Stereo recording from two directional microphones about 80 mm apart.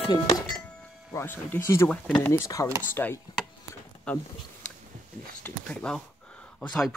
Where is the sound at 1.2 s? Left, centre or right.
Left.